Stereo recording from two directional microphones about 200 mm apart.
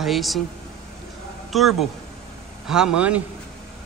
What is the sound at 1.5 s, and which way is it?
Speech, centre (ahead or behind).